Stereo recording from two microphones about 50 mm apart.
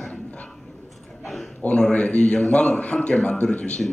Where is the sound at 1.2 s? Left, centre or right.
Centre.